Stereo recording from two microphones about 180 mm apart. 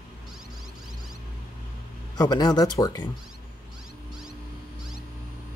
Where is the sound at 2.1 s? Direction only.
20° left (ahead or behind).